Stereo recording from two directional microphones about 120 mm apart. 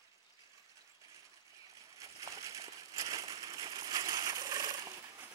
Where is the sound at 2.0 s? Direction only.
30° right (ahead or behind).